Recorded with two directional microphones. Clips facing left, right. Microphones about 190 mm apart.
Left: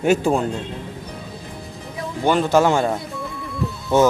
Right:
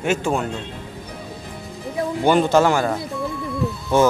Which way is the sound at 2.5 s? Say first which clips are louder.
Even; 20° left (ahead or behind).